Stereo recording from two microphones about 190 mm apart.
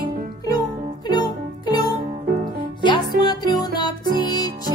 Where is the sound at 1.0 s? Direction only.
20° left (ahead or behind).